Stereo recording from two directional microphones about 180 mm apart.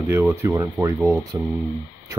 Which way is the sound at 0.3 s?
15° right (ahead or behind).